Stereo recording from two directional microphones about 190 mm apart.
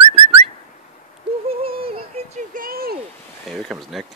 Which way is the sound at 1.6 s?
30° right (ahead or behind).